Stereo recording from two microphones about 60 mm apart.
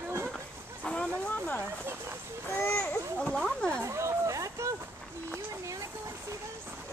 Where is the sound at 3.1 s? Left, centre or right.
Centre.